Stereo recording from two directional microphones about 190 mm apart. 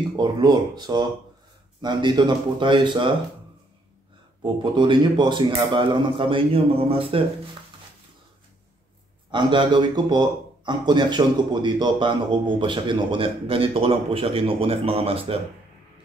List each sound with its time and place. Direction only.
0.1 s speech: 20° right (ahead or behind)
4.4 s speech: 25° right (ahead or behind)
9.3 s speech: 25° right (ahead or behind)